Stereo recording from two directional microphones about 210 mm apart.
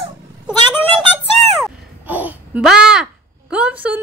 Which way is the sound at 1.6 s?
5° right (ahead or behind).